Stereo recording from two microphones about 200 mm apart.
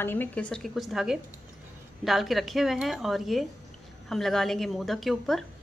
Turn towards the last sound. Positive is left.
turn(degrees=0)  # may be behind; listen again after turning